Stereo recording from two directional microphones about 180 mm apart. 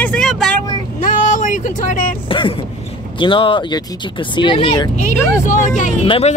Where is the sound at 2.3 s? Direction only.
30° left (ahead or behind).